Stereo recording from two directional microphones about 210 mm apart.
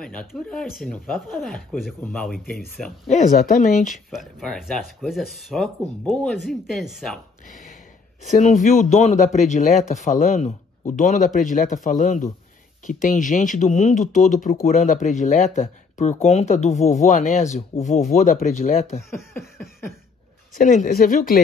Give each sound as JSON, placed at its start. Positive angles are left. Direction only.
{"t": 0.0, "sound": "speech", "side_deg": 5}
{"t": 3.1, "sound": "speech", "side_deg": 35}
{"t": 3.9, "sound": "speech", "side_deg": 0}
{"t": 7.4, "sound": "speech", "side_deg": 35}
{"t": 20.5, "sound": "speech", "side_deg": 40}